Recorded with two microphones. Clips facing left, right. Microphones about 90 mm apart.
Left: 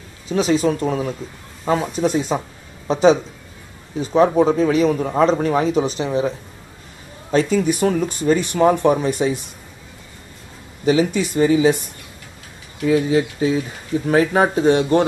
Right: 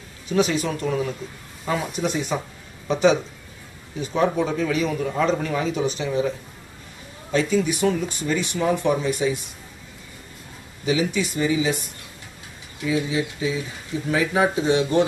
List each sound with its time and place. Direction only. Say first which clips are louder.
0.3 s a man's voice: left 4 dB; 30° left (ahead or behind)
7.2 s speech: left 4 dB; 45° left (ahead or behind)
10.9 s speech: left 5 dB; 50° left (ahead or behind)
12.8 s speech: left 7 dB; 50° left (ahead or behind)